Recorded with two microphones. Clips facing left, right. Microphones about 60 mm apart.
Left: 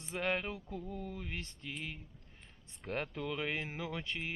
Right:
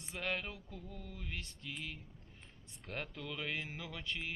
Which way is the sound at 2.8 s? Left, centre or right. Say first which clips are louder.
Left 6 dB; centre.